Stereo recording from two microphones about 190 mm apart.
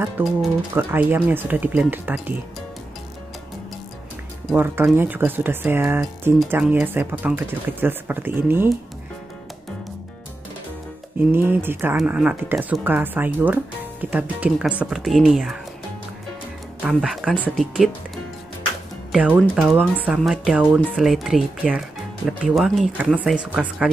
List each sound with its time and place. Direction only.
0.2 s speech: 10° right (ahead or behind)
4.5 s speech: 5° right (ahead or behind)
11.3 s speech: 10° right (ahead or behind)
16.8 s speech: 5° right (ahead or behind)